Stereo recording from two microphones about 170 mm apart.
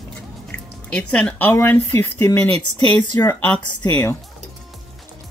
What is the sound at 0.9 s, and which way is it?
Speech, 5° left (ahead or behind).